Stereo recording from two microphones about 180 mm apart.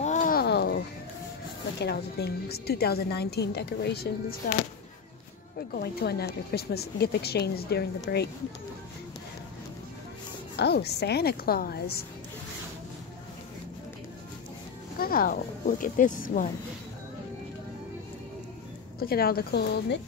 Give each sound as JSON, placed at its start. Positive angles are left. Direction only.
{"t": 0.0, "sound": "a sound", "side_deg": 45}
{"t": 1.8, "sound": "a woman's voice", "side_deg": 65}
{"t": 5.7, "sound": "a woman's voice", "side_deg": 60}
{"t": 10.5, "sound": "a woman's voice", "side_deg": 65}
{"t": 15.0, "sound": "speech", "side_deg": 55}
{"t": 18.9, "sound": "a woman's voice", "side_deg": 55}